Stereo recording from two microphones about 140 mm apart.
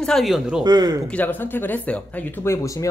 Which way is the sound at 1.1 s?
15° left (ahead or behind).